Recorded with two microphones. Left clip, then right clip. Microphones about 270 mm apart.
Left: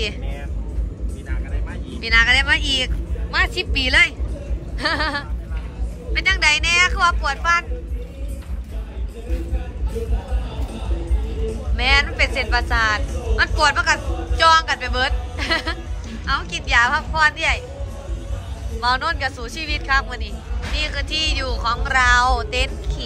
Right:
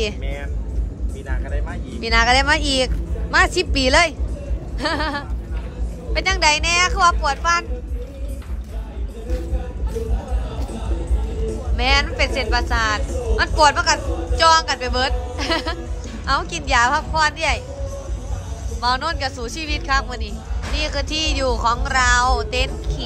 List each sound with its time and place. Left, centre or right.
2.0 s a woman's voice: centre
4.7 s speech: centre
11.7 s speech: centre
18.8 s speech: centre